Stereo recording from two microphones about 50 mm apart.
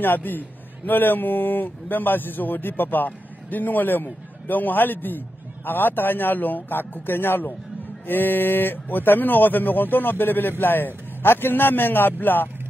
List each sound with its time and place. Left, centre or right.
0.0 s a man's voice: left